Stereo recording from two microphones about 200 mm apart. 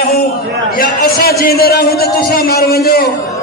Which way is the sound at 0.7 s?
45° left (ahead or behind).